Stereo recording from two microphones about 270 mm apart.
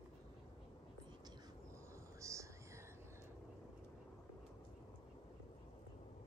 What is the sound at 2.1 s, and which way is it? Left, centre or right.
Whispering, centre.